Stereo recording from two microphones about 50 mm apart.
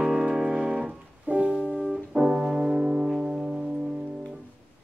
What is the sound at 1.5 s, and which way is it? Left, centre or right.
Music, centre.